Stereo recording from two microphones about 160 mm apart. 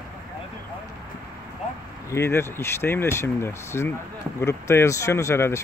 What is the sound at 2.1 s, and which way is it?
Speech, 15° left (ahead or behind).